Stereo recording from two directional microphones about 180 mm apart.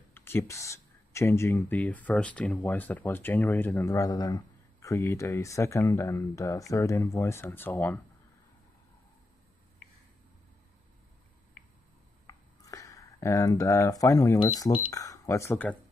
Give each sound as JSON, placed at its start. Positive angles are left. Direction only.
{"t": 0.1, "sound": "speech", "side_deg": 15}
{"t": 12.3, "sound": "a sound", "side_deg": 20}
{"t": 14.9, "sound": "speech", "side_deg": 20}